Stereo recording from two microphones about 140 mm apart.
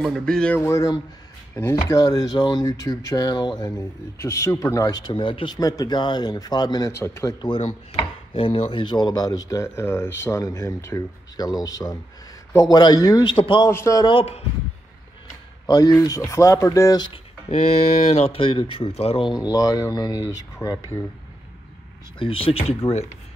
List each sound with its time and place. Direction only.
0.0 s speech: 5° left (ahead or behind)
0.6 s chopping: 20° left (ahead or behind); by 5.5 s 40° left (ahead or behind)
5.6 s chopping: 25° left (ahead or behind)
6.9 s chopping: 20° left (ahead or behind)
7.4 s chopping: 35° left (ahead or behind)
13.7 s chopping: 20° left (ahead or behind)
14.0 s speech: 40° left (ahead or behind)
15.6 s chopping: 25° left (ahead or behind)
17.5 s speech: 50° left (ahead or behind); by 20.7 s 25° left (ahead or behind)
22.2 s speech: 40° left (ahead or behind)